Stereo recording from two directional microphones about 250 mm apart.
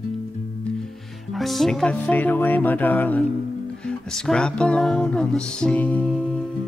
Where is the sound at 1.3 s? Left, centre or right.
Centre.